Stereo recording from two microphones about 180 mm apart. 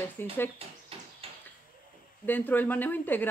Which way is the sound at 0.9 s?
30° right (ahead or behind).